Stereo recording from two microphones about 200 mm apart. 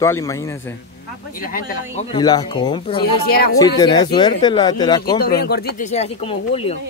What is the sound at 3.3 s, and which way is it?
Speech, 50° left (ahead or behind).